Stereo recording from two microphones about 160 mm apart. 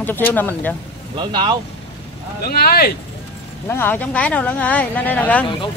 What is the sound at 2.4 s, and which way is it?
Speech, 70° left (ahead or behind).